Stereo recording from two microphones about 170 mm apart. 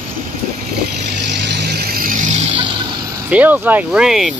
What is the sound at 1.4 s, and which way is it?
Vehicle, 75° right (ahead or behind).